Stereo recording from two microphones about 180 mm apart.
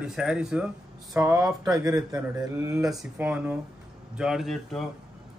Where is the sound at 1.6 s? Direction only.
20° right (ahead or behind).